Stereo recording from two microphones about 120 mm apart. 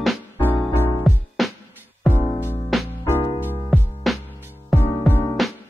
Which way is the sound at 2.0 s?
15° left (ahead or behind).